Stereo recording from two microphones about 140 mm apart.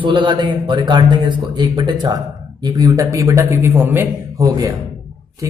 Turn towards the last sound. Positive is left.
turn(degrees=-25)  # may be behind; listen again after turning